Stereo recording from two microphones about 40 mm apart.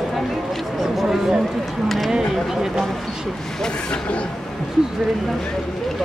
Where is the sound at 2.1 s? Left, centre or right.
Centre.